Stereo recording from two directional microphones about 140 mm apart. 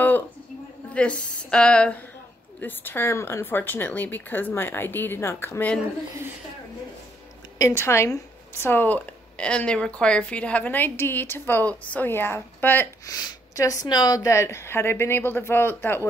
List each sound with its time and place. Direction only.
0.9 s speech: 5° left (ahead or behind)
7.5 s speech: 20° left (ahead or behind)
13.0 s speech: 25° left (ahead or behind)